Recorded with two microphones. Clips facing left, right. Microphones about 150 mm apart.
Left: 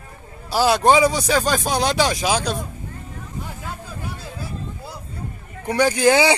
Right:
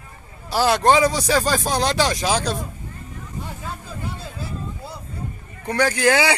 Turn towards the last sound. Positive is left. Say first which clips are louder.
# left 3 dB
turn(degrees=20)  # may be behind; listen again after turning